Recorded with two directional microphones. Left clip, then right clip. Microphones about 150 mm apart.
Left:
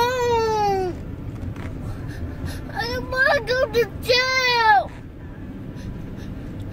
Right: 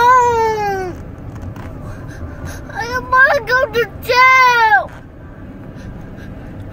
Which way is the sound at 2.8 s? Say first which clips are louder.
Right 9 dB; 5° left (ahead or behind).